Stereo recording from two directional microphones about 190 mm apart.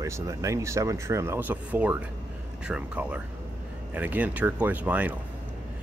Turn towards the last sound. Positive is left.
turn(degrees=-10)  # may be behind; listen again after turning